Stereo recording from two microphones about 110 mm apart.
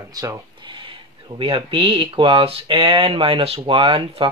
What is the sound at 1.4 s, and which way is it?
Speech, 55° right (ahead or behind).